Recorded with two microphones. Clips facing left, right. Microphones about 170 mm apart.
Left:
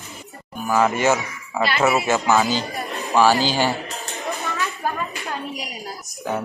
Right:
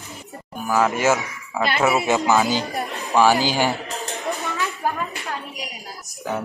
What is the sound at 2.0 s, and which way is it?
Speech, 15° right (ahead or behind).